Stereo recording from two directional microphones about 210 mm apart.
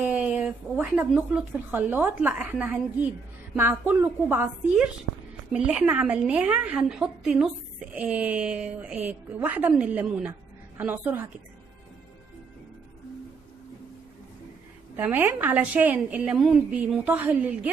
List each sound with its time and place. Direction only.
0.0 s a woman's voice: 5° right (ahead or behind)
15.0 s a woman's voice: 10° right (ahead or behind)